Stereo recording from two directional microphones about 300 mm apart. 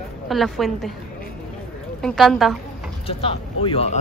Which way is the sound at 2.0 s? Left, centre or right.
Centre.